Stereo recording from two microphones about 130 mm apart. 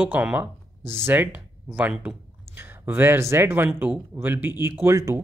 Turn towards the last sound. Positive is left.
turn(degrees=-20)  # may be behind; listen again after turning